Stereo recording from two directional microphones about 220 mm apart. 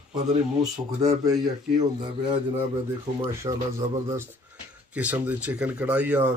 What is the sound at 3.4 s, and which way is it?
Speech, 15° right (ahead or behind).